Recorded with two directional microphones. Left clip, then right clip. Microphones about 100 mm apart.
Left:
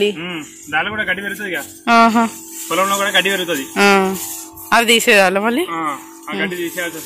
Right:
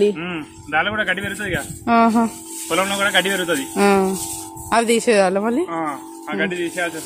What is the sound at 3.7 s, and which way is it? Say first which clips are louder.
Speech: left 5 dB; 5° right (ahead or behind).